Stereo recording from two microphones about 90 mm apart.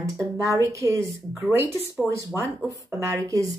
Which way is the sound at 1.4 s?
25° right (ahead or behind).